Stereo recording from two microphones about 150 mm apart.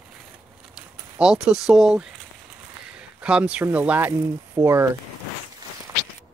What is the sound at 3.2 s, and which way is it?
Speech, 5° right (ahead or behind).